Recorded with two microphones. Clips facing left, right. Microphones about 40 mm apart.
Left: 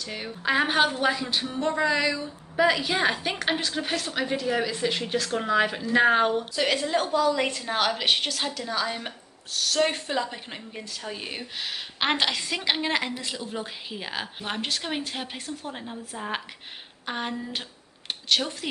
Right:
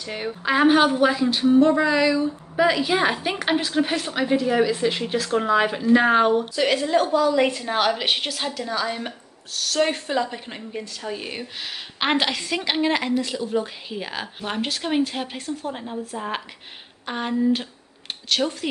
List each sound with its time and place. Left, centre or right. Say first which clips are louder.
0.0 s speech: right 5 dB; centre
0.4 s a woman's voice: right 5 dB; centre